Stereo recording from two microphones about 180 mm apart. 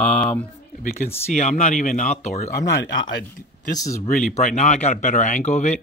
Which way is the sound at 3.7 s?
20° left (ahead or behind).